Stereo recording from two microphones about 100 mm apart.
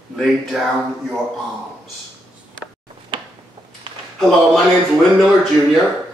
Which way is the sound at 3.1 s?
55° right (ahead or behind).